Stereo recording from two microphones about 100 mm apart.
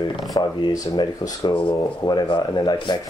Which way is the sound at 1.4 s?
55° left (ahead or behind).